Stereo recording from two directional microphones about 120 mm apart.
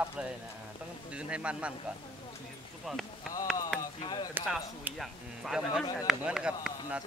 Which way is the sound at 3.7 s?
35° left (ahead or behind).